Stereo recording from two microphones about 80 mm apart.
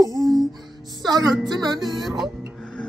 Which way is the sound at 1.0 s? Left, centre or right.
Right.